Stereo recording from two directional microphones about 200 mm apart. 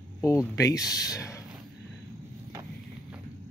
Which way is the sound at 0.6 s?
15° left (ahead or behind).